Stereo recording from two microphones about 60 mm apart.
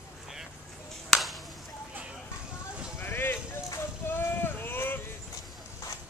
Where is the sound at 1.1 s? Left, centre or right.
Centre.